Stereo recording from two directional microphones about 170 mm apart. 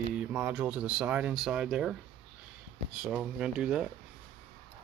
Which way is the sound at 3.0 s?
5° right (ahead or behind).